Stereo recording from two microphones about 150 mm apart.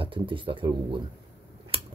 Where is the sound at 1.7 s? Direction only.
40° right (ahead or behind).